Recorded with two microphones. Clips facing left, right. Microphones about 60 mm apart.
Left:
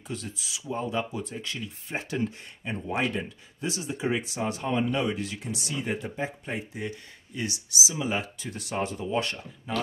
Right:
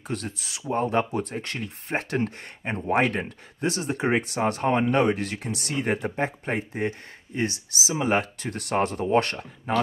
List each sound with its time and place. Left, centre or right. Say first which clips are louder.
0.1 s speech: right 4 dB; right